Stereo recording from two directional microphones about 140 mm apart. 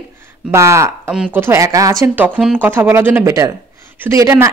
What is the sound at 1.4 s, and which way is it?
Speech, 20° right (ahead or behind).